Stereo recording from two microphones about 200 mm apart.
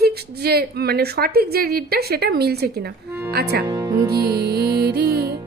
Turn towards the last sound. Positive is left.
turn(degrees=-50)  # may be behind; listen again after turning